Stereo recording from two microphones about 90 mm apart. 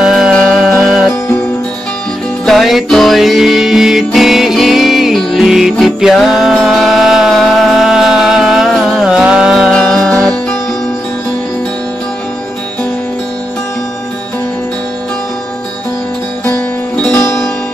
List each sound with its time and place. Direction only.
0.0 s music: 5° right (ahead or behind)
2.4 s music: centre (ahead or behind)
9.7 s music: 5° left (ahead or behind)